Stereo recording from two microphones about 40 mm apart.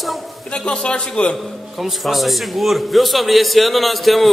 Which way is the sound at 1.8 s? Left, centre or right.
Centre.